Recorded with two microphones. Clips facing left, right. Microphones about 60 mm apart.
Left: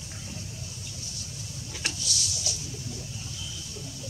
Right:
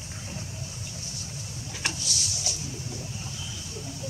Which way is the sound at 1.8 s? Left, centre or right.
Right.